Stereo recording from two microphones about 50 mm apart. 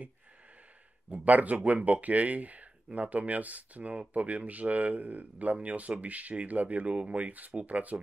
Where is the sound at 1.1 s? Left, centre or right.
Right.